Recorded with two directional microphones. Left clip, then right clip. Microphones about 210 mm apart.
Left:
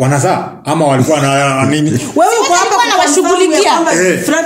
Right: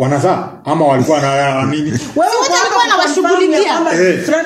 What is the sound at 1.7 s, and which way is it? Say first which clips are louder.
A child's voice: left 4 dB; 40° left (ahead or behind).